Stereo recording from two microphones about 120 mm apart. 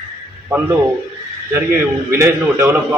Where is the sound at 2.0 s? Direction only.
20° right (ahead or behind).